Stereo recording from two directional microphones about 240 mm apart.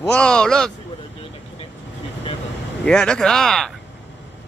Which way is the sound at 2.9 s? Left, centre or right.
Centre.